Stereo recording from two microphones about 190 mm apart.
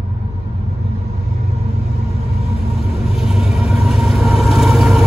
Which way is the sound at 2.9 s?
Centre (ahead or behind).